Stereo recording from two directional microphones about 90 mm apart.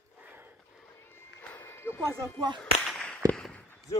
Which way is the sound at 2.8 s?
5° left (ahead or behind).